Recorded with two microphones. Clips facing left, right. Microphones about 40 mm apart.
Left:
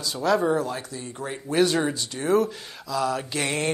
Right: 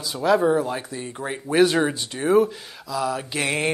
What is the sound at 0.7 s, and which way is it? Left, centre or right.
Speech, right.